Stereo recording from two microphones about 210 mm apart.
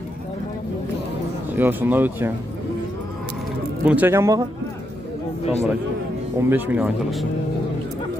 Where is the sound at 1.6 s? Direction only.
10° right (ahead or behind).